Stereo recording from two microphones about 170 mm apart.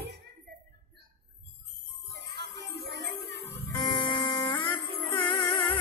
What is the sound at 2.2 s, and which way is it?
Music, 80° right.